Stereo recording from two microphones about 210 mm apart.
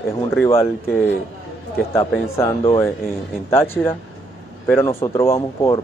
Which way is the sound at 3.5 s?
10° left (ahead or behind).